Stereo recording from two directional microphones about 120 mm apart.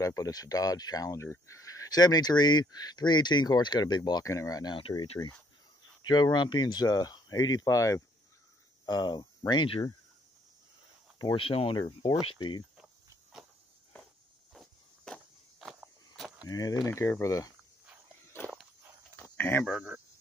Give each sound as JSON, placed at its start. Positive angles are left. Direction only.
{"t": 0.0, "sound": "speech", "side_deg": 30}
{"t": 5.2, "sound": "speech", "side_deg": 20}
{"t": 6.0, "sound": "speech", "side_deg": 35}
{"t": 11.3, "sound": "speech", "side_deg": 50}
{"t": 14.5, "sound": "walk", "side_deg": 0}
{"t": 16.4, "sound": "speech", "side_deg": 30}
{"t": 16.8, "sound": "speech", "side_deg": 20}
{"t": 18.4, "sound": "walk", "side_deg": -5}
{"t": 19.1, "sound": "a sound", "side_deg": 15}
{"t": 19.6, "sound": "speech", "side_deg": -5}